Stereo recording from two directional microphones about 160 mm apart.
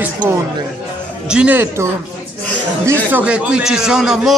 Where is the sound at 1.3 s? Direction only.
10° right (ahead or behind).